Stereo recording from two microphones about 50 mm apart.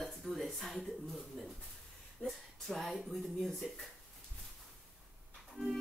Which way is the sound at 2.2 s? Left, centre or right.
Centre.